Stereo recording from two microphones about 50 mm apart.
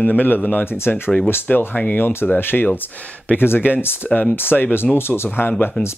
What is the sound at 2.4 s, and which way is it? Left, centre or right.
Speech, left.